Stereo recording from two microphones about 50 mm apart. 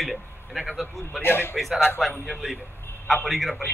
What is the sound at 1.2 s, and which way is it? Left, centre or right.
Speech, left.